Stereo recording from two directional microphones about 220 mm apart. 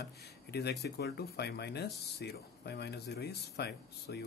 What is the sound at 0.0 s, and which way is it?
Speech, 50° left (ahead or behind).